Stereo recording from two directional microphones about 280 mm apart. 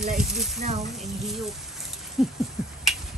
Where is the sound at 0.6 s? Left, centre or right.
Right.